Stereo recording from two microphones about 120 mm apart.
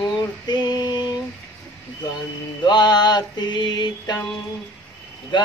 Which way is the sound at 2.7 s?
35° left (ahead or behind).